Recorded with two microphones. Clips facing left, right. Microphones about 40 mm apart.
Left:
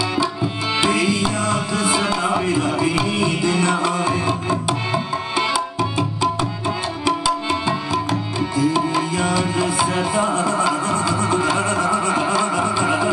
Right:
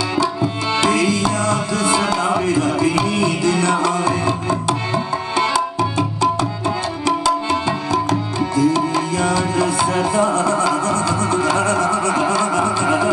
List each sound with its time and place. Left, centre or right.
0.1 s tabla: centre
7.1 s tabla: centre